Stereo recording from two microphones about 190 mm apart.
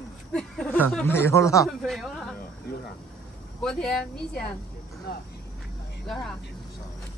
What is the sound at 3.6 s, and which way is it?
Speech, centre (ahead or behind).